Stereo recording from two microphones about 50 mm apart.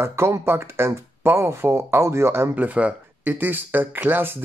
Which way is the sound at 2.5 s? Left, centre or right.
Right.